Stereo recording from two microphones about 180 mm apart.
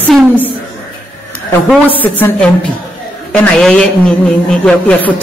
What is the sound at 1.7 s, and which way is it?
Speech, 10° left (ahead or behind).